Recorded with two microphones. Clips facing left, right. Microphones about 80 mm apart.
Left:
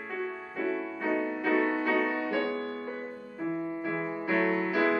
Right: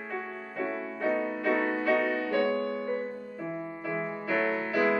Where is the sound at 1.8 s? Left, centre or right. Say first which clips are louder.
Right 1 dB; centre.